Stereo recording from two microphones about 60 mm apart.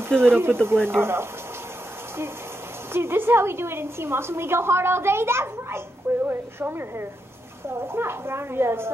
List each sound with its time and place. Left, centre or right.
0.2 s speech: right
2.9 s a woman's voice: right